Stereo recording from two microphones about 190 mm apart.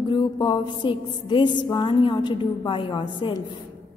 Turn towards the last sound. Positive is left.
turn(degrees=25)  # may be behind; listen again after turning